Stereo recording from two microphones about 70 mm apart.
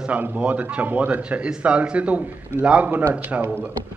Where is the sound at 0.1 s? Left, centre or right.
Centre.